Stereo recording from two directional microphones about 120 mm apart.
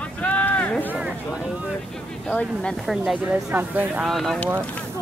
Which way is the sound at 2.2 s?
10° left (ahead or behind).